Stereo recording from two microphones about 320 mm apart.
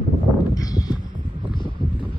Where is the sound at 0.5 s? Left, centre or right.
Centre.